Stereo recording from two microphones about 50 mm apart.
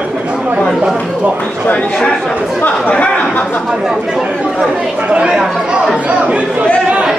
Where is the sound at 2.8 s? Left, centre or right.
Left.